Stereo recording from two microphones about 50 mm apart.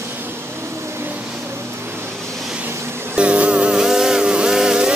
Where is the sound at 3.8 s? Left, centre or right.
Centre.